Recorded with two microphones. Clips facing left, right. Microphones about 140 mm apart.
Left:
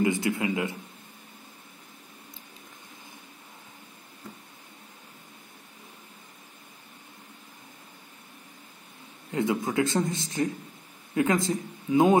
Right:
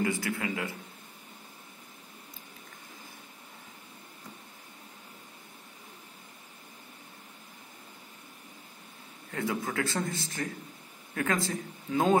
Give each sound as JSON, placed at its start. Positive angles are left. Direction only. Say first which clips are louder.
{"t": 0.0, "sound": "a man's voice", "louder": "left 5 dB", "side_deg": 20}
{"t": 9.3, "sound": "a man's voice", "louder": "left 6 dB", "side_deg": 20}